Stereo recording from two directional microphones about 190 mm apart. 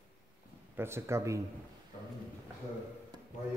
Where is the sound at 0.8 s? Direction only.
15° right (ahead or behind).